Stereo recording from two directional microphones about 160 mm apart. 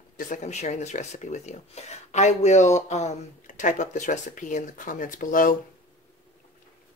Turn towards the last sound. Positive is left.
turn(degrees=55)  # may be behind; listen again after turning